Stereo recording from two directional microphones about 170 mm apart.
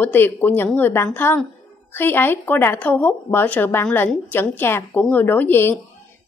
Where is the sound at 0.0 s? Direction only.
10° left (ahead or behind).